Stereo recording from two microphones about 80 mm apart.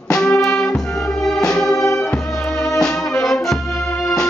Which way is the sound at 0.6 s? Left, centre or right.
Centre.